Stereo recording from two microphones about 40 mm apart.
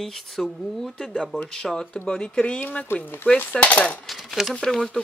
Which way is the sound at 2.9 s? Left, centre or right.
Left.